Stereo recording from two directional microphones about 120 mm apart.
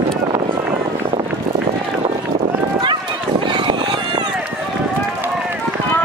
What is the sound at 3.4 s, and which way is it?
Run, 40° right (ahead or behind).